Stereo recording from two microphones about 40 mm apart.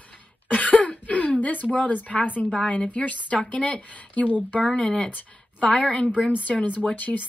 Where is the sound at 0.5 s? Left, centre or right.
Left.